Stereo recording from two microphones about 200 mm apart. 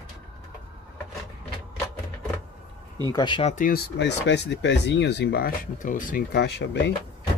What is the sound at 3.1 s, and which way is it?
Speech, 25° left (ahead or behind).